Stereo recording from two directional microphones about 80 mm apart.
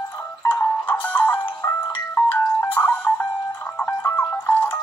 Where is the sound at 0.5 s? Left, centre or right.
Left.